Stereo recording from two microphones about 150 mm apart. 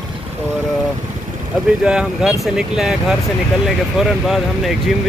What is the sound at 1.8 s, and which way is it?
Speech, 5° right (ahead or behind).